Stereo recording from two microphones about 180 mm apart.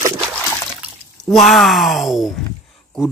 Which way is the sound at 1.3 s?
Centre (ahead or behind).